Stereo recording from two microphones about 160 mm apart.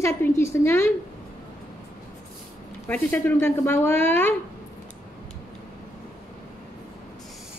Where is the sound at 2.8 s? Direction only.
15° left (ahead or behind).